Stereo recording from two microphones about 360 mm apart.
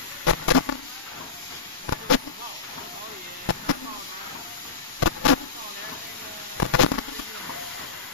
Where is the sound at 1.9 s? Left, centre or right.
Left.